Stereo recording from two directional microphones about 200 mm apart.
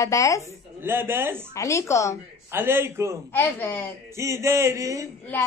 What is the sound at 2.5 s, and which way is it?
Laughter, 10° right (ahead or behind).